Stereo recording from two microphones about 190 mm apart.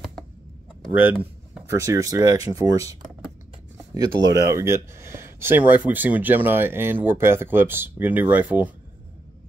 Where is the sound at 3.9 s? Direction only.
20° right (ahead or behind).